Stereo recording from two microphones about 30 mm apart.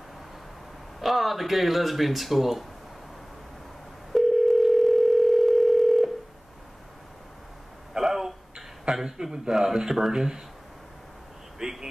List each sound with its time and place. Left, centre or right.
0.9 s speech: centre
4.1 s dial tone: centre
8.0 s a sound: centre
8.9 s a man's voice: centre
11.6 s vehicle: centre